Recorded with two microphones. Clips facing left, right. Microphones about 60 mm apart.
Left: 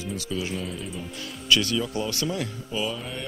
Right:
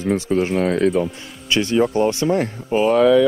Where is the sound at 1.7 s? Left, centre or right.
Right.